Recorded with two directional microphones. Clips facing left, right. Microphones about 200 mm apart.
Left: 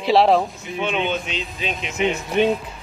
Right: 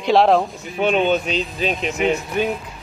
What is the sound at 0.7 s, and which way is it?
Speech, 40° right (ahead or behind).